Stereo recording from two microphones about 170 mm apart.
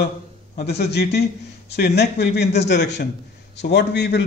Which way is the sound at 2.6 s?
90° left.